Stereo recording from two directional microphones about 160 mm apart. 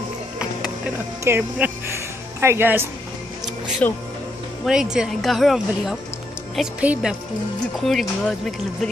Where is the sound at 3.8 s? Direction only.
10° left (ahead or behind).